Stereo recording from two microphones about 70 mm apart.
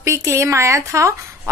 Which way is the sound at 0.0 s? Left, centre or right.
Right.